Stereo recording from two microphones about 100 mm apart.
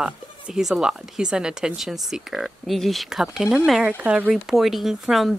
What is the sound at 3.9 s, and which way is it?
Speech, 15° right (ahead or behind).